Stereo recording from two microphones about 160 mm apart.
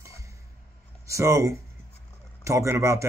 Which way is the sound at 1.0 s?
20° right (ahead or behind).